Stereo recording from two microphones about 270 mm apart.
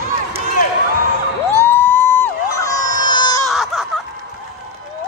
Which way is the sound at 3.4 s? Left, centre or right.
Centre.